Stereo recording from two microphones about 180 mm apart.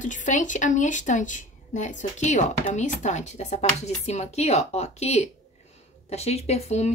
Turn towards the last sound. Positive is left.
turn(degrees=40)  # may be behind; listen again after turning